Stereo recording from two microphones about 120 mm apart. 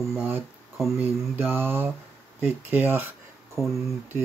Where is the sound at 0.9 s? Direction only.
15° right (ahead or behind).